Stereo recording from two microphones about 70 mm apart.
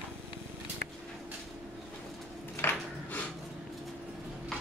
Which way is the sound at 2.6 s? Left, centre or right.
Left.